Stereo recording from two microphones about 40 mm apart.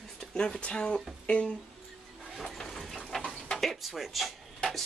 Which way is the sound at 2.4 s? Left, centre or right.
Centre.